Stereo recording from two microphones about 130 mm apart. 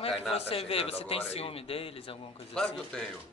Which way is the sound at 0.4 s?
50° left (ahead or behind).